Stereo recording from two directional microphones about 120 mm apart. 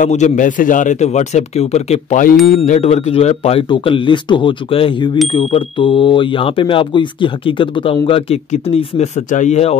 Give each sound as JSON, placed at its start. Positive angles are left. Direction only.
{"t": 0.0, "sound": "a man's voice", "side_deg": 85}
{"t": 3.6, "sound": "speech", "side_deg": 45}
{"t": 8.6, "sound": "speech", "side_deg": 55}